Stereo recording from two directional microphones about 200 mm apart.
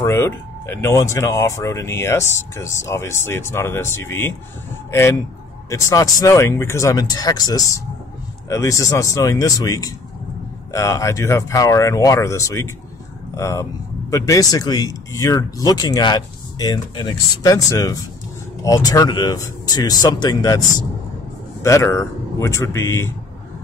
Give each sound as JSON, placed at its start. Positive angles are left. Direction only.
{"t": 0.0, "sound": "speech", "side_deg": 15}
{"t": 5.7, "sound": "speech", "side_deg": 15}
{"t": 21.6, "sound": "speech", "side_deg": 15}